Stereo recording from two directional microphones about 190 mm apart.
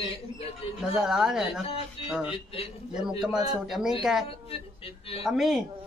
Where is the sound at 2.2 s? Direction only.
30° left (ahead or behind).